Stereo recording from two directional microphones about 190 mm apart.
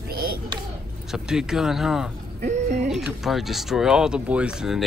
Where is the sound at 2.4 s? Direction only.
35° right (ahead or behind).